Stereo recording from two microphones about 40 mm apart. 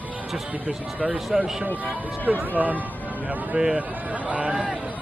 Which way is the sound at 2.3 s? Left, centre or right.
Right.